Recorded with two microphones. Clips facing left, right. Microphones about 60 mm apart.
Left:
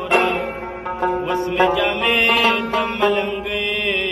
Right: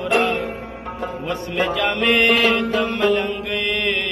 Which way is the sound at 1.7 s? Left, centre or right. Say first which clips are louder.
Even; centre.